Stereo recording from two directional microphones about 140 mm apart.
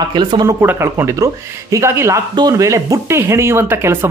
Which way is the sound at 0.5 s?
15° right (ahead or behind).